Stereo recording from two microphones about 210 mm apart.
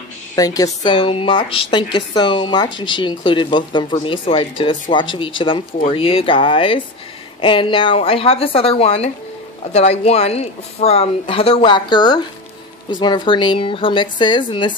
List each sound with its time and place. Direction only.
0.4 s a woman's voice: 15° left (ahead or behind)